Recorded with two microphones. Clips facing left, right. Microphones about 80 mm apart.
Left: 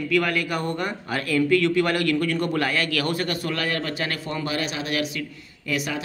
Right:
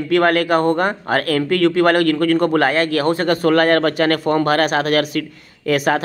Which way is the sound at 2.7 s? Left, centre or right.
Right.